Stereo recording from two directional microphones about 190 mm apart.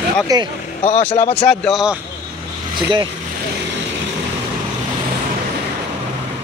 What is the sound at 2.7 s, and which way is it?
Speech, 25° right (ahead or behind).